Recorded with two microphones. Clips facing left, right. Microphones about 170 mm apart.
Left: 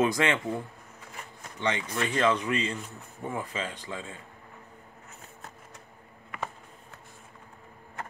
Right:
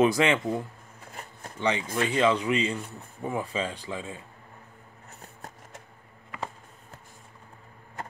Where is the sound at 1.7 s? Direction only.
25° right (ahead or behind).